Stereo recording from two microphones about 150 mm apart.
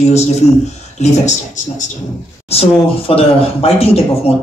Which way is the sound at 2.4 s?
40° left (ahead or behind).